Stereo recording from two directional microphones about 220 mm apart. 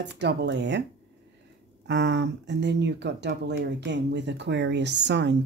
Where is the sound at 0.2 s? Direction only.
50° right (ahead or behind).